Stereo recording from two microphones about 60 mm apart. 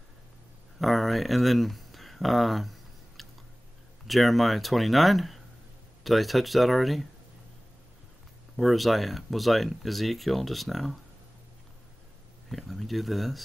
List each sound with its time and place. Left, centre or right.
0.7 s speech: centre
8.5 s speech: centre
12.4 s speech: centre